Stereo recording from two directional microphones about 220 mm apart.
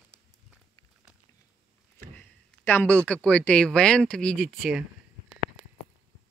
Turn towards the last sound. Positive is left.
turn(degrees=-5)  # may be behind; listen again after turning